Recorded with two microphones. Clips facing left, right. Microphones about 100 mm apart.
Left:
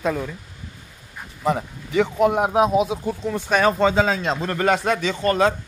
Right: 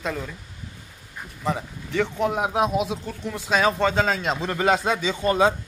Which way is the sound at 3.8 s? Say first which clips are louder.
Left 3 dB; 5° left (ahead or behind).